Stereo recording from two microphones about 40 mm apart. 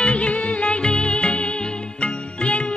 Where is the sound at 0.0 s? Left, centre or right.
Left.